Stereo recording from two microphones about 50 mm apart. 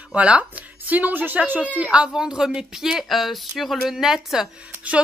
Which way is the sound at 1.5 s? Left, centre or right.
Right.